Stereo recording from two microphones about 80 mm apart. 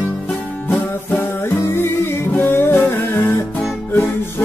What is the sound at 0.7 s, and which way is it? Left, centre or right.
Music, left.